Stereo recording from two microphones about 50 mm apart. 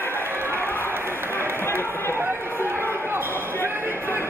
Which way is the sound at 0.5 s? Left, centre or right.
Left.